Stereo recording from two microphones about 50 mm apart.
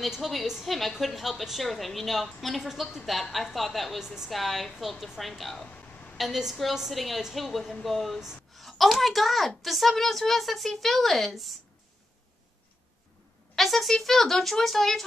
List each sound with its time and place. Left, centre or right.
0.0 s a woman's voice: centre
5.7 s a sound: left
6.1 s a woman's voice: centre
13.6 s a woman's voice: centre